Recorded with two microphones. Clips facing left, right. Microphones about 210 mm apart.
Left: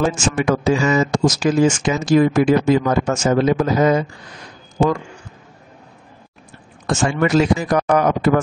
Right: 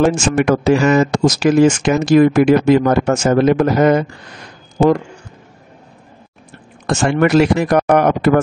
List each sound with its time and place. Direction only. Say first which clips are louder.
0.0 s speech: right 5 dB; 65° right (ahead or behind)
6.9 s speech: right 4 dB; 65° right (ahead or behind)